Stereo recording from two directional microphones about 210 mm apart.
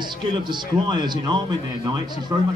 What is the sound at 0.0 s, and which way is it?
A man's voice, 20° right (ahead or behind).